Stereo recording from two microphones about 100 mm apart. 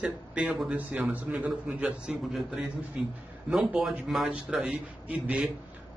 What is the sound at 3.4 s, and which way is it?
A man's voice, 10° right (ahead or behind).